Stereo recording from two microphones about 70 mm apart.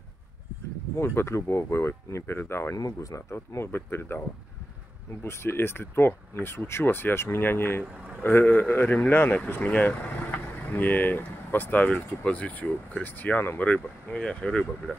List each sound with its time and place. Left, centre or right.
0.9 s speech: left
2.8 s speech: left
3.2 s speech: left
5.2 s speech: left; by 15.0 s centre